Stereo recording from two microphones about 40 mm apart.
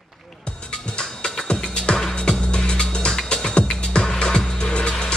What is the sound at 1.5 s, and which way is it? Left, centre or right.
Music, left.